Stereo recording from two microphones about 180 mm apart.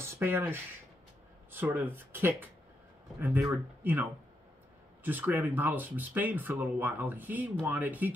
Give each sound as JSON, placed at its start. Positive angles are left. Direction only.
{"t": 0.0, "sound": "speech", "side_deg": -10}